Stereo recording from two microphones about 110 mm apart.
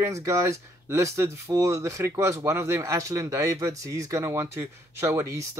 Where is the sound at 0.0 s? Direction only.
25° right (ahead or behind).